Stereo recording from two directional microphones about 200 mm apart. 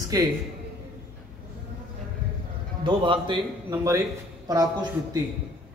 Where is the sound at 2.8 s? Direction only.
25° right (ahead or behind).